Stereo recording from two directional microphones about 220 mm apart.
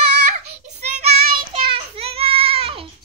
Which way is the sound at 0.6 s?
30° right (ahead or behind).